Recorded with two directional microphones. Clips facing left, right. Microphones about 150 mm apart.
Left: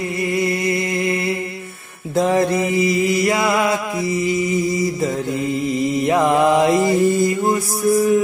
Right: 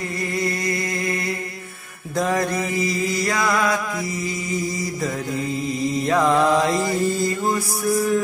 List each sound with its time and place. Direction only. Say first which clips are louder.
0.2 s music: left 5 dB; 20° left (ahead or behind)
2.1 s mantra: left 5 dB; 25° left (ahead or behind)
5.9 s mantra: left 2 dB; 20° left (ahead or behind)